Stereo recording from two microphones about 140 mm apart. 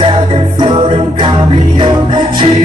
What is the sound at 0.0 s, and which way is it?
Music, 40° right (ahead or behind).